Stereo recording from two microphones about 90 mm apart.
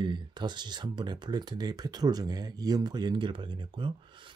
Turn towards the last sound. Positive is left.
turn(degrees=-65)  # may be behind; listen again after turning